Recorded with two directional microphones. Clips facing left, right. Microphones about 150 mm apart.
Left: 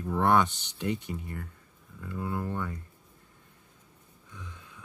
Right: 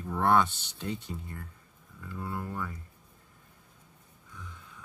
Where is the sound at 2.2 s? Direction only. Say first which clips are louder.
Left 4 dB; 20° left (ahead or behind).